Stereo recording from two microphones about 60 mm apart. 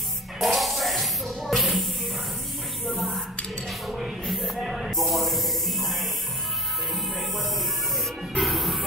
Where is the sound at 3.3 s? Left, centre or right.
Centre.